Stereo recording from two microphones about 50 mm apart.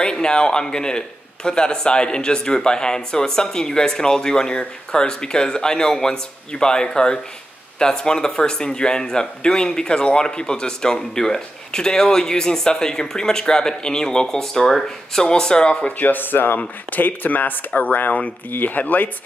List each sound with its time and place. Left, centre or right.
0.0 s speech: centre
16.0 s speech: left